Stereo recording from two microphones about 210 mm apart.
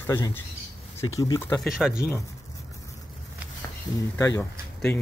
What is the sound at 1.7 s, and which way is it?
Speech, 5° right (ahead or behind).